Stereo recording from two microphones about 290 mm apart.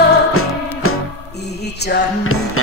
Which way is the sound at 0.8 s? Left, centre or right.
Left.